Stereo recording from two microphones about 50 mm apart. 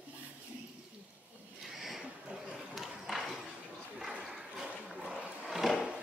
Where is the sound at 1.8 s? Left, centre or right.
Centre.